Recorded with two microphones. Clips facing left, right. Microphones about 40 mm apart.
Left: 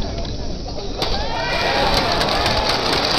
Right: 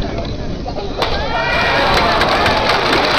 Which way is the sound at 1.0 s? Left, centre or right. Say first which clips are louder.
Right 5 dB; right.